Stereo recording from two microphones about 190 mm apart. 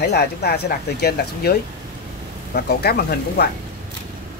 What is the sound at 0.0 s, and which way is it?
Speech, 60° left (ahead or behind).